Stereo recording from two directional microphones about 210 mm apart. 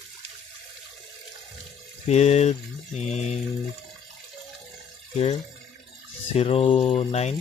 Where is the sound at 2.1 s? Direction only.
30° left (ahead or behind).